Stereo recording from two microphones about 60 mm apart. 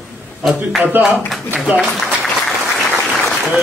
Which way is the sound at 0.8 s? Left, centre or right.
Right.